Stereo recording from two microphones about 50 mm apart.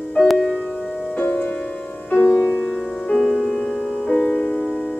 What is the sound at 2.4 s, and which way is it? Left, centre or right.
Music, left.